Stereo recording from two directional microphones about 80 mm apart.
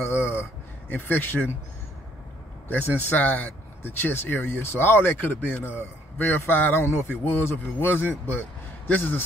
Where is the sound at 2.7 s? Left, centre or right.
Left.